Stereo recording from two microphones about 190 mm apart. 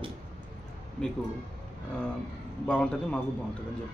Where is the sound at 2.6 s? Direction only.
5° left (ahead or behind).